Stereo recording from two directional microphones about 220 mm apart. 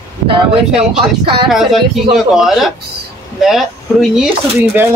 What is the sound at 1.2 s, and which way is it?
Speech, 20° right (ahead or behind).